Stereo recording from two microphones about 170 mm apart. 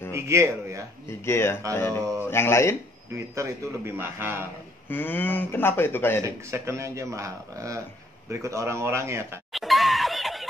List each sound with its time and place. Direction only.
0.1 s a man's voice: 15° right (ahead or behind)
1.2 s speech: 15° left (ahead or behind)
3.3 s a man's voice: 15° right (ahead or behind)
4.8 s speech: 10° left (ahead or behind)
6.2 s a man's voice: 15° right (ahead or behind)
9.5 s snicker: centre (ahead or behind)